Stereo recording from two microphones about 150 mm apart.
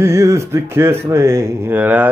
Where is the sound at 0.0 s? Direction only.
20° right (ahead or behind).